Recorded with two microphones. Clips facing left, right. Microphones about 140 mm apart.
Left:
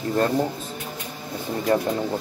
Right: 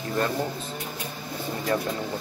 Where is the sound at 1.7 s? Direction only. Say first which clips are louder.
Left 5 dB; 35° left (ahead or behind).